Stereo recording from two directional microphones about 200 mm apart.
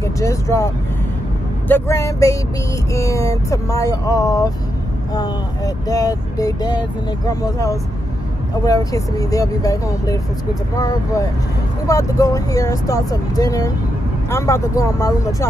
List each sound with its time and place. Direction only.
0.0 s speech: 15° left (ahead or behind)
1.7 s speech: 15° left (ahead or behind)
5.9 s speech: 20° left (ahead or behind)
11.9 s speech: 15° left (ahead or behind)